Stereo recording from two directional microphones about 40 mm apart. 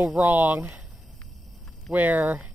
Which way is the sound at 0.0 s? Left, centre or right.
Right.